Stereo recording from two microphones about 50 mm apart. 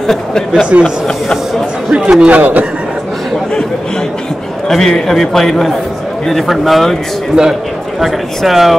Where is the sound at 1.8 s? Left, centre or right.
Right.